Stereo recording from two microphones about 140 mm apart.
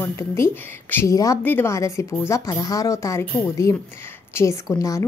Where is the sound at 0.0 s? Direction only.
20° left (ahead or behind).